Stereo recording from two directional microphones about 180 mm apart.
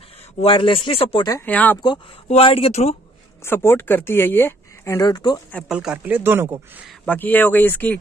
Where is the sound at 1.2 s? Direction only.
15° left (ahead or behind).